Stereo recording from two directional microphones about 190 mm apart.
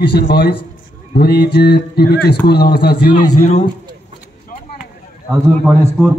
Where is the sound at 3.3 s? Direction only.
35° left (ahead or behind).